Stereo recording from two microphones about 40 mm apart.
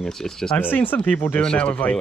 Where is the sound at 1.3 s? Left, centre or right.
Left.